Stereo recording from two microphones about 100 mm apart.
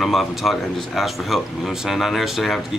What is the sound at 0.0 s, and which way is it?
Speech, centre (ahead or behind).